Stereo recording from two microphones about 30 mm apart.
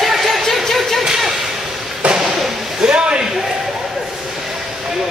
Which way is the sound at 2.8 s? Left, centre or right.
Right.